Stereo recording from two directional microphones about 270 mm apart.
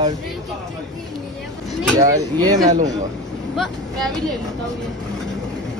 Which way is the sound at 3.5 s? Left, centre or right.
Centre.